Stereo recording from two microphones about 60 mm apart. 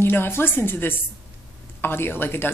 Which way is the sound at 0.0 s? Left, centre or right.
Left.